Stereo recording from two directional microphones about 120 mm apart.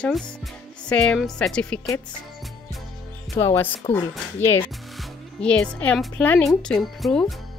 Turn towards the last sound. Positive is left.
turn(degrees=0)  # may be behind; listen again after turning